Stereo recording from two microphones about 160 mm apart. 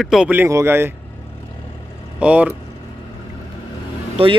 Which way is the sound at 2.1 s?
10° right (ahead or behind).